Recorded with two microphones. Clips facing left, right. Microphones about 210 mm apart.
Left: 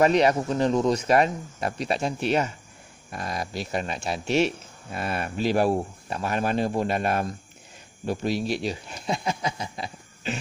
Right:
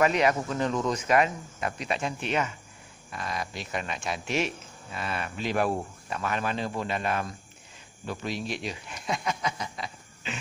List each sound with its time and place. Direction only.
0.0 s speech: 35° left (ahead or behind)
4.9 s speech: 45° left (ahead or behind)